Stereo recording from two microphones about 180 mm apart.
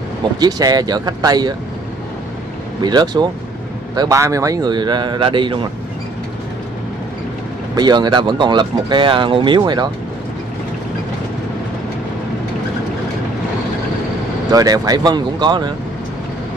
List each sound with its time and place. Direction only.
0.4 s speech: 20° right (ahead or behind)
2.8 s speech: 25° right (ahead or behind)
7.7 s speech: 25° right (ahead or behind)
14.5 s speech: 20° right (ahead or behind)